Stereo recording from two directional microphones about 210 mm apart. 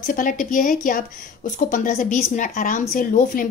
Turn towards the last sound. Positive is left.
turn(degrees=40)  # may be behind; listen again after turning